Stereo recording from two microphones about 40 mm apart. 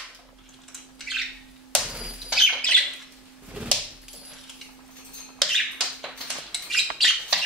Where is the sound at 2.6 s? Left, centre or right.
Left.